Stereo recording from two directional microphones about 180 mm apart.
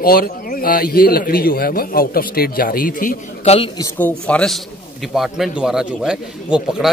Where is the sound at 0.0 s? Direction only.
55° left (ahead or behind).